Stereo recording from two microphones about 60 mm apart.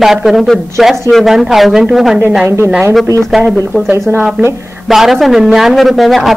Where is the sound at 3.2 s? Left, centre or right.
Centre.